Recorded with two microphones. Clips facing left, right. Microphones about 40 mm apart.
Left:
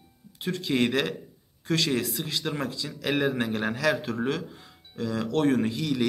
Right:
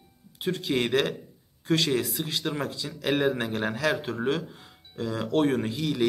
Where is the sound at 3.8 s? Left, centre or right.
Centre.